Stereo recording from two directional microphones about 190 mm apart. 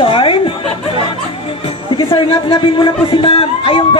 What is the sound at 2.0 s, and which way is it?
Speech, 30° left (ahead or behind).